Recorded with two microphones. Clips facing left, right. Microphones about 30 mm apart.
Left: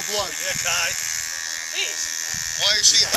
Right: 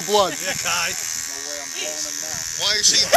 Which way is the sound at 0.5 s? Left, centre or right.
Centre.